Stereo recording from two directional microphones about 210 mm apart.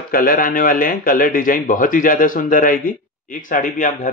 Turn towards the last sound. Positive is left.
turn(degrees=40)  # may be behind; listen again after turning